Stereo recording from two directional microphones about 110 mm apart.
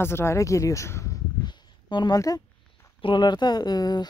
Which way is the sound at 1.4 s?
40° left (ahead or behind).